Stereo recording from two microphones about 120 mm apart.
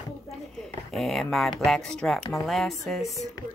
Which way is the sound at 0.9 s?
Centre (ahead or behind).